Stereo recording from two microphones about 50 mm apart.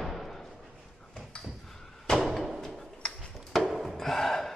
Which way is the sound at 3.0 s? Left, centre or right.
Centre.